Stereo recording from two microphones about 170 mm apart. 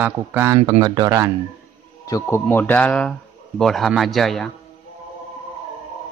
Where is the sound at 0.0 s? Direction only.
10° right (ahead or behind).